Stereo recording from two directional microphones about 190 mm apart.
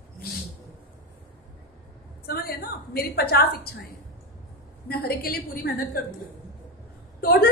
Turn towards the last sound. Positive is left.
turn(degrees=50)  # may be behind; listen again after turning